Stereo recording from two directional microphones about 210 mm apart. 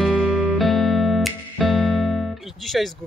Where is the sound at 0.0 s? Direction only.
Centre (ahead or behind).